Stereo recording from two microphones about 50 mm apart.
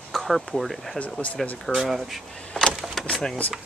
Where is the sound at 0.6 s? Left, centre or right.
Centre.